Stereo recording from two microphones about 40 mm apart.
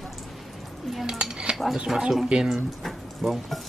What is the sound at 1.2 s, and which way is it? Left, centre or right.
Dishes, right.